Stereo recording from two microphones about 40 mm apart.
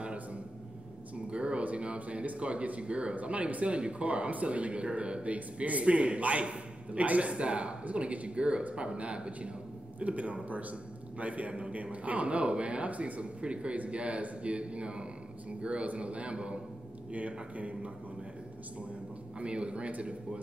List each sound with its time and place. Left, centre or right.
0.0 s a sound: right
1.6 s a man's voice: right
17.6 s a man's voice: right